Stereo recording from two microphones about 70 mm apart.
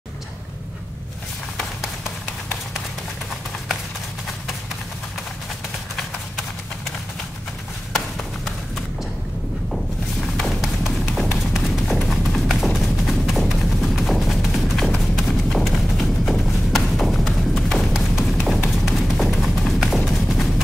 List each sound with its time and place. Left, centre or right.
10.3 s music: centre
11.3 s clip-clop: centre
15.1 s music: centre
20.1 s clip-clop: centre